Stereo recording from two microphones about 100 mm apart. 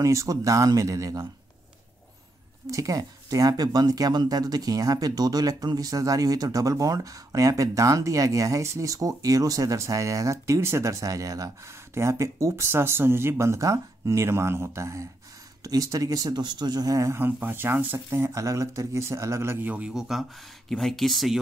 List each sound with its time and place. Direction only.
0.0 s speech: 30° right (ahead or behind)
2.6 s speech: 35° right (ahead or behind)
17.2 s speech: 20° right (ahead or behind)
19.9 s speech: 5° right (ahead or behind)